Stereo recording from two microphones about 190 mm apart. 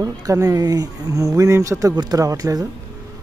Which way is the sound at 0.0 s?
20° right (ahead or behind).